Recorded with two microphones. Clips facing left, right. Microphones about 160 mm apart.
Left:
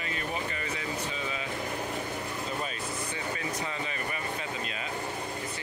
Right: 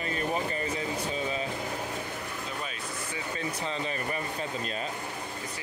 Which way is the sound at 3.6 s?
30° right (ahead or behind).